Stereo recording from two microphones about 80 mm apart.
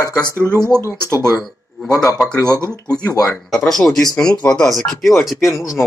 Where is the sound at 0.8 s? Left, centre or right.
Right.